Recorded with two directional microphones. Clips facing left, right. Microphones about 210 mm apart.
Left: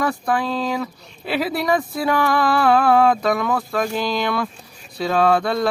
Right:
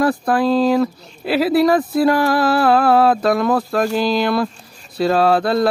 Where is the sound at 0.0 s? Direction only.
35° right (ahead or behind).